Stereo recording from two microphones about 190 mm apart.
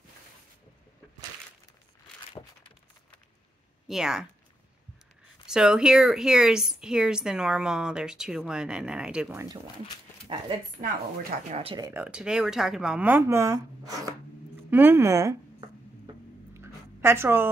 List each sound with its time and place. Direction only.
3.8 s speech: 5° right (ahead or behind)
5.5 s a woman's voice: 5° right (ahead or behind)
10.8 s a woman's voice: 45° right (ahead or behind)
11.5 s speech: 25° right (ahead or behind)
11.9 s speech: 5° right (ahead or behind)
16.5 s a sound: 10° right (ahead or behind)